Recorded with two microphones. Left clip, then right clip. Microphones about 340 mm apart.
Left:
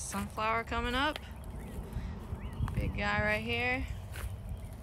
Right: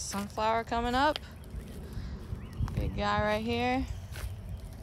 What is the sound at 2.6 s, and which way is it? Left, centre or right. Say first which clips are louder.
Speech: right 2 dB; centre.